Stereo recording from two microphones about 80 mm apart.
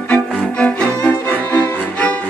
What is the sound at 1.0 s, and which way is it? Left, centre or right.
Violin, left.